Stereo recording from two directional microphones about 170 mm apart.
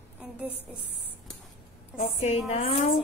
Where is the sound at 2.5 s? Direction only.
40° left (ahead or behind).